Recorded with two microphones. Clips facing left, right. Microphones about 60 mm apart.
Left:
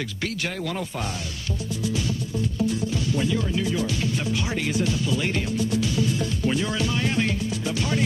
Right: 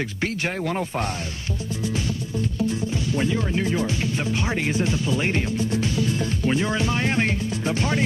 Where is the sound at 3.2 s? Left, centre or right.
Right.